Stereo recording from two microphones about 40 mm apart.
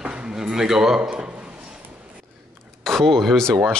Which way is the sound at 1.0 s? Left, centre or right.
Right.